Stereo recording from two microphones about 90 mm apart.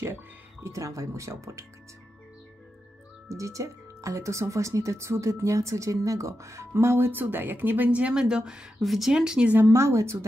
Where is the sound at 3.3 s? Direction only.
35° right (ahead or behind); by 9.5 s 10° right (ahead or behind).